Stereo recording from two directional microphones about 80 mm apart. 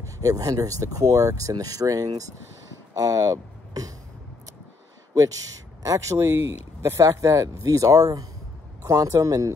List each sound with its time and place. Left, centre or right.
0.0 s speech: right
5.8 s speech: right